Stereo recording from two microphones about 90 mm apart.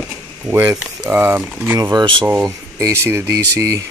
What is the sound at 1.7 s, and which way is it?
Speech, 45° right (ahead or behind).